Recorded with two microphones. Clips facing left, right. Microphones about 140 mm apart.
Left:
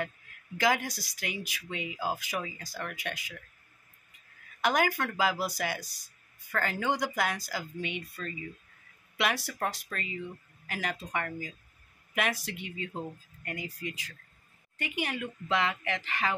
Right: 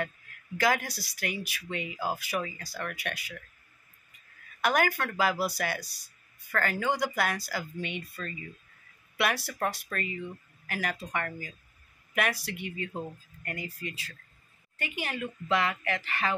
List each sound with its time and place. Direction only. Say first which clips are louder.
0.6 s speech: even; 15° left (ahead or behind)
4.6 s speech: right 1 dB; 15° left (ahead or behind)